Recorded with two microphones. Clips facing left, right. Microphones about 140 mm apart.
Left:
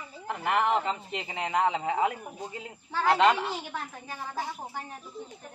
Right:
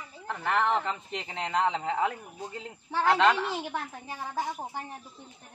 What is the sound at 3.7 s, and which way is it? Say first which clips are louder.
A woman's voice: right 2 dB; 20° right (ahead or behind).